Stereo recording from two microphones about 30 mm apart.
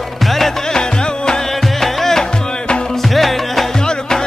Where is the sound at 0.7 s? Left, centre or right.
Left.